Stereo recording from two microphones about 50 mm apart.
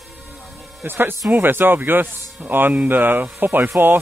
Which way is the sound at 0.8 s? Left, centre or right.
Right.